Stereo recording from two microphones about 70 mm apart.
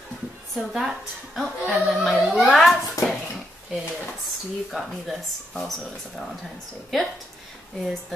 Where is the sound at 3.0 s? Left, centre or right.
Left.